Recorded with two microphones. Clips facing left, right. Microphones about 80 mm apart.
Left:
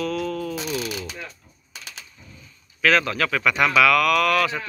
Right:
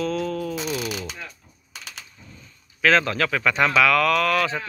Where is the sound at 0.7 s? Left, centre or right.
Centre.